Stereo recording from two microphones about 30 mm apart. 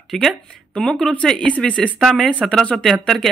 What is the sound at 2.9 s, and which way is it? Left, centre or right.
Speech, centre.